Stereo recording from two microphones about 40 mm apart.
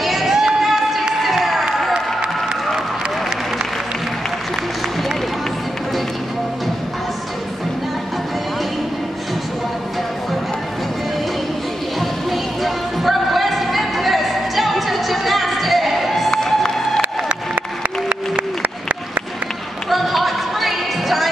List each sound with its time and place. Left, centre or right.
0.0 s a sound: centre
0.6 s run: centre
1.2 s crowd: centre
12.0 s music: centre
16.3 s music: centre
17.0 s applause: right
19.9 s music: centre